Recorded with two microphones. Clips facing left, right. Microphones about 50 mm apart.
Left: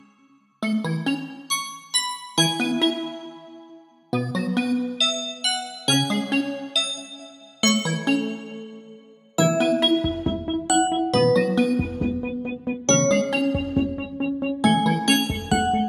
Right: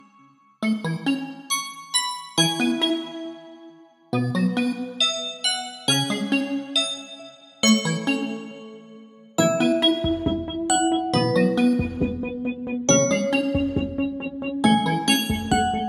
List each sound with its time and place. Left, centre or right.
0.6 s music: centre
4.1 s music: centre
6.4 s music: centre
7.6 s music: centre
9.4 s music: centre